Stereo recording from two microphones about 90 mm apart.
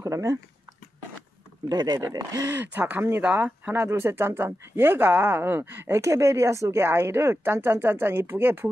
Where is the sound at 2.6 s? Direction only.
20° right (ahead or behind).